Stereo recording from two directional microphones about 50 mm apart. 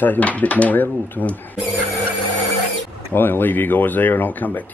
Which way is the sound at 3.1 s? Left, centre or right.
Left.